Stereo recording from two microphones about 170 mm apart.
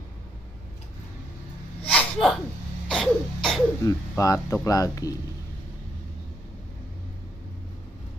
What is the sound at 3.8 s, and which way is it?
Speech, 20° left (ahead or behind).